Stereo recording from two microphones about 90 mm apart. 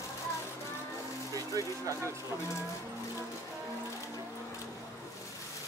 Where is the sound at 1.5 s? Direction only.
35° right (ahead or behind).